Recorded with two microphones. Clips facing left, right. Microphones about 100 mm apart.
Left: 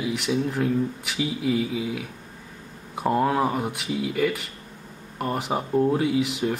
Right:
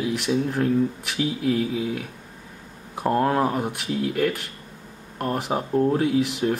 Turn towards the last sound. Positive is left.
turn(degrees=0)  # may be behind; listen again after turning